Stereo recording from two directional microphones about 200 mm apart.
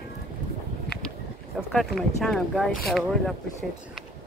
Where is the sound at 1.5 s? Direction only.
Centre (ahead or behind).